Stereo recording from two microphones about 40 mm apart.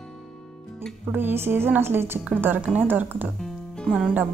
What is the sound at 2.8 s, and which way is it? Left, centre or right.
Speech, right.